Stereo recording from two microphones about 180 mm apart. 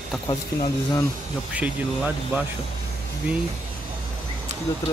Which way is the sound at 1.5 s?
10° right (ahead or behind).